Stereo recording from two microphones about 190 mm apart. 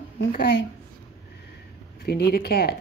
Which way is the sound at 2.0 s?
55° left (ahead or behind).